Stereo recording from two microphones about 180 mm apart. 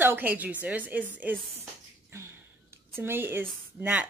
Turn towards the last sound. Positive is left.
turn(degrees=-10)  # may be behind; listen again after turning